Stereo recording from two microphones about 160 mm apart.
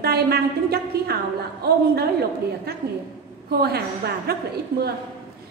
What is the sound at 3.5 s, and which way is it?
Speech, 80° right.